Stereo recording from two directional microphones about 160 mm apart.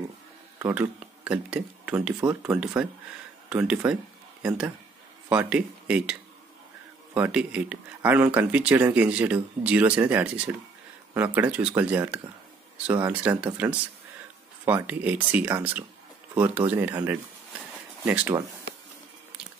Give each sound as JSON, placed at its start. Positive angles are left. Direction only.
{"t": 0.6, "sound": "speech", "side_deg": -10}
{"t": 2.1, "sound": "speech", "side_deg": -20}
{"t": 3.4, "sound": "speech", "side_deg": -5}
{"t": 7.2, "sound": "speech", "side_deg": -5}
{"t": 14.7, "sound": "speech", "side_deg": -10}